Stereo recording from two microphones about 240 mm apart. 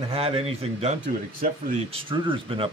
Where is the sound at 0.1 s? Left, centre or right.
Right.